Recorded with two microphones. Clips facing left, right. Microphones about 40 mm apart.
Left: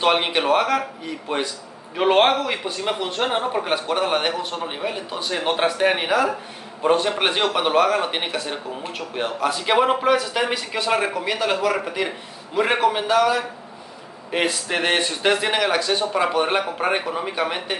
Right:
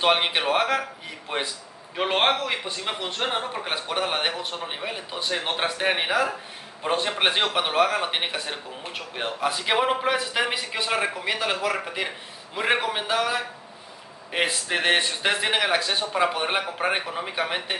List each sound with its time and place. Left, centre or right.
0.0 s speech: centre
2.0 s speech: centre